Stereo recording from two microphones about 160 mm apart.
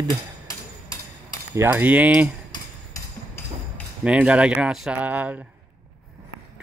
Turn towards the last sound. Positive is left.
turn(degrees=-10)  # may be behind; listen again after turning